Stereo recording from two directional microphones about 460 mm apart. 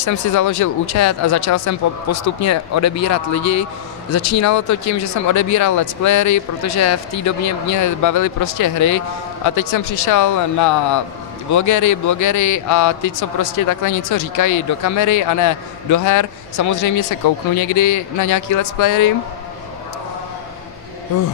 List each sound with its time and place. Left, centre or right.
0.0 s a man's voice: left